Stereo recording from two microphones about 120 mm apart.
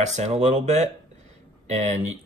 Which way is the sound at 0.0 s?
70° right (ahead or behind).